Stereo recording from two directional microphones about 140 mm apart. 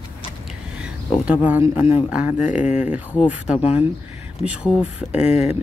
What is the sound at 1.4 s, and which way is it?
Speech, 15° right (ahead or behind).